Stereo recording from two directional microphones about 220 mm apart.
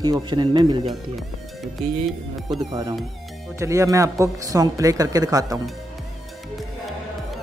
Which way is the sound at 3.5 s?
15° right (ahead or behind).